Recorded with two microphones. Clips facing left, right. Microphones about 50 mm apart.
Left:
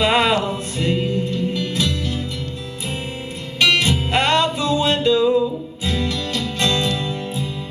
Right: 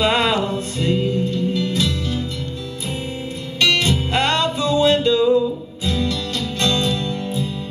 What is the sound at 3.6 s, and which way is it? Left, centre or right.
Music, left.